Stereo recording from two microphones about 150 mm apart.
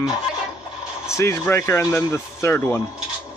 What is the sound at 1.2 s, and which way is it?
Speech, 20° left (ahead or behind).